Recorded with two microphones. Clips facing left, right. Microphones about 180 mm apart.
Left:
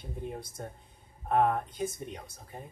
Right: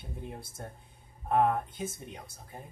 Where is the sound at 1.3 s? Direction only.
Centre (ahead or behind).